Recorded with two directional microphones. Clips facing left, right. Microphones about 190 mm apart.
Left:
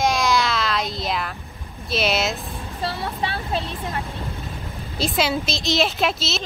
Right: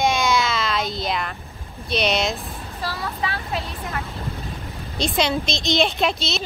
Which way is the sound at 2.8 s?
25° left (ahead or behind).